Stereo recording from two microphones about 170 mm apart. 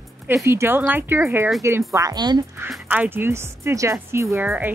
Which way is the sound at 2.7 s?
10° right (ahead or behind).